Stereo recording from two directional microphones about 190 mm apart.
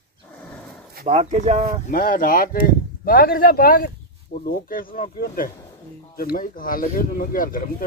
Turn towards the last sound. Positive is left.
turn(degrees=45)  # may be behind; listen again after turning